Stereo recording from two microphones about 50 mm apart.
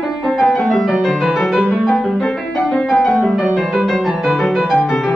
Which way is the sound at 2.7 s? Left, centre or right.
Centre.